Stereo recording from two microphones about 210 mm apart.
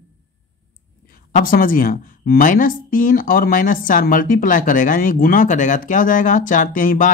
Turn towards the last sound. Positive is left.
turn(degrees=40)  # may be behind; listen again after turning